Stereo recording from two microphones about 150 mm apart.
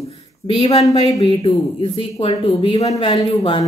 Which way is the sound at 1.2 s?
35° left (ahead or behind).